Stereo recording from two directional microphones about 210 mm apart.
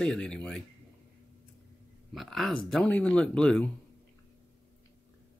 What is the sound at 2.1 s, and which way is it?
Speech, centre (ahead or behind).